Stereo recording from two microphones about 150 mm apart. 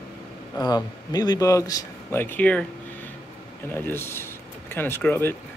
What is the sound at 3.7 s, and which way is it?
Speech, 15° left (ahead or behind).